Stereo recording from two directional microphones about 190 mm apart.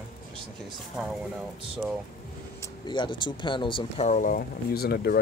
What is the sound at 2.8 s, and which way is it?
Speech, 25° left (ahead or behind).